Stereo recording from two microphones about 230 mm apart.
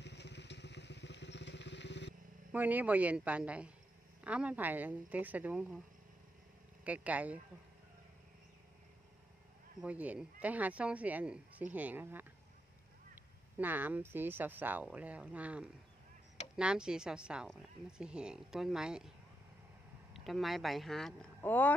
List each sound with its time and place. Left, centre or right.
0.0 s motorcycle: left
2.5 s a woman's voice: centre
6.8 s speech: centre
9.8 s speech: centre
13.6 s a woman's voice: centre
20.1 s speech: centre